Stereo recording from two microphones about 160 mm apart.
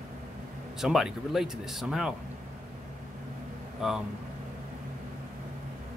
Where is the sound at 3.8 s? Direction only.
Centre (ahead or behind).